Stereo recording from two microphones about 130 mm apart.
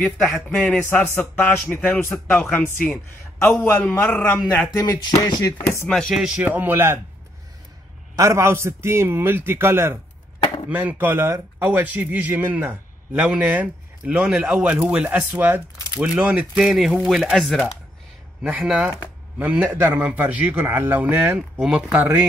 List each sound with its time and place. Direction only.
0.0 s a man's voice: 15° left (ahead or behind)
4.7 s a sound: 30° left (ahead or behind)
5.9 s speech: centre (ahead or behind); by 7.0 s 15° right (ahead or behind)
8.2 s a man's voice: 20° right (ahead or behind); by 21.8 s 5° right (ahead or behind)